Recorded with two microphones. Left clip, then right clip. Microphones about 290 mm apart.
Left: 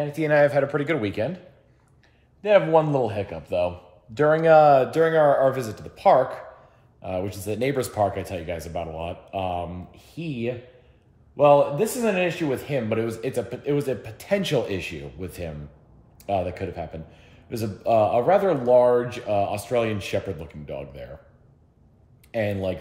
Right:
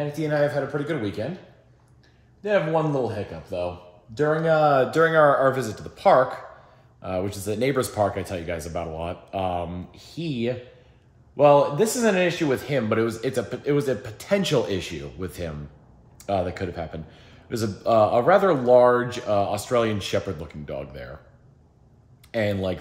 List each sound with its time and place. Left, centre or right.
0.2 s speech: centre
0.6 s speech: left
2.4 s speech: left
4.4 s speech: centre
22.3 s speech: centre